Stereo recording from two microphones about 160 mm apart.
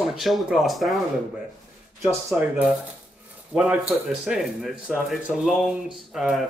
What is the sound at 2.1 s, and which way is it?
Speech, 15° right (ahead or behind).